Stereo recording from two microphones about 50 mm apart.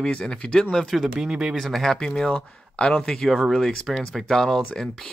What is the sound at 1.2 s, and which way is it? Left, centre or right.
Speech, centre.